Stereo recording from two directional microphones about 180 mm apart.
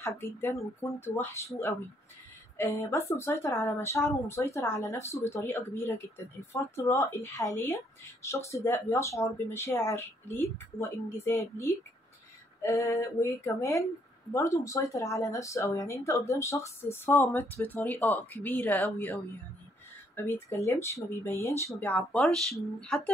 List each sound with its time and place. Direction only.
0.0 s speech: 15° left (ahead or behind)
2.5 s speech: 15° left (ahead or behind)
20.2 s speech: 10° left (ahead or behind)